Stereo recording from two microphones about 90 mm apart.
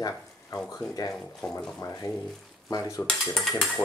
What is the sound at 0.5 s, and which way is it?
Cutlery, 45° left (ahead or behind).